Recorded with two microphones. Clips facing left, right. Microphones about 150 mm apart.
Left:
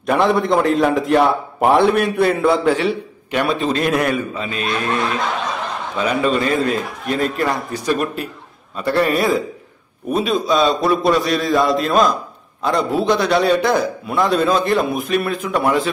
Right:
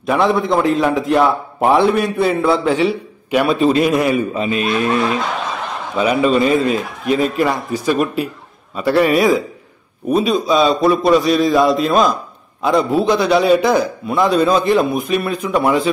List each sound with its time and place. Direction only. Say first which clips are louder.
0.0 s a man's voice: right 1 dB; centre (ahead or behind)
4.3 s a man's voice: right 5 dB; 20° right (ahead or behind)
5.9 s a man's voice: right 4 dB; 10° right (ahead or behind)